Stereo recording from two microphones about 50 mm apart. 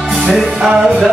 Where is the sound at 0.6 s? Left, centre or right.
Centre.